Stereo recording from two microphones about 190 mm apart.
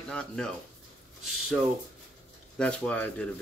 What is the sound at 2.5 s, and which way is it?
Speech, 5° left (ahead or behind).